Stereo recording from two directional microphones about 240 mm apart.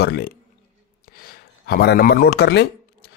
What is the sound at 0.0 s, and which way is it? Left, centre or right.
Speech, left.